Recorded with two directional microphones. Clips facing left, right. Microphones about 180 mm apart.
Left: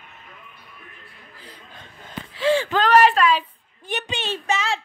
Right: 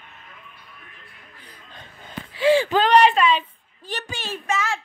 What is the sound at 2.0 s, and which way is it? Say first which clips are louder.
Gasp: right 2 dB; centre (ahead or behind).